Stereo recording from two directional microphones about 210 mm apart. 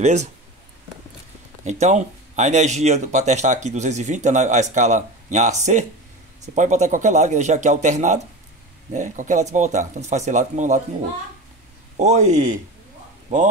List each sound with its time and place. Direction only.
0.0 s speech: 35° right (ahead or behind)
1.6 s speech: 35° right (ahead or behind)
12.0 s speech: 35° right (ahead or behind)